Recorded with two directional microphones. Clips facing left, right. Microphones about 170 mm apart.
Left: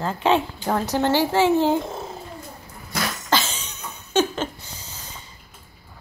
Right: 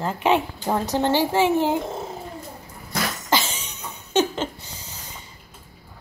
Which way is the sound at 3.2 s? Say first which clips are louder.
Left 1 dB; 15° right (ahead or behind).